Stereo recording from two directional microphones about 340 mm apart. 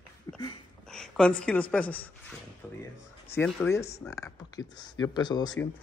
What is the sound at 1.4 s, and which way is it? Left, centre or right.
Speech, centre.